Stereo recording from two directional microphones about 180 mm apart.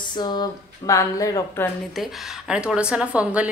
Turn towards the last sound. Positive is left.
turn(degrees=-5)  # may be behind; listen again after turning